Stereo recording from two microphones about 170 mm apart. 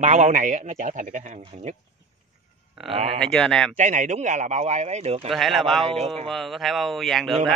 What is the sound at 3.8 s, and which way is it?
Speech, 45° right (ahead or behind).